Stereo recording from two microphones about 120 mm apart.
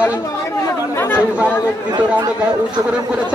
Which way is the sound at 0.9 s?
20° left (ahead or behind).